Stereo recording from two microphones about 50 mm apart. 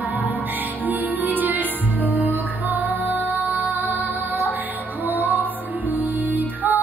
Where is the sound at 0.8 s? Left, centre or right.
Right.